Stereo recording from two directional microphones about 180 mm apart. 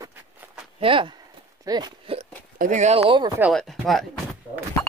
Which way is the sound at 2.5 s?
45° right (ahead or behind).